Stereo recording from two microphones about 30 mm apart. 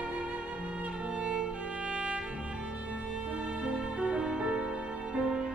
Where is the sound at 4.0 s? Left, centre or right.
Right.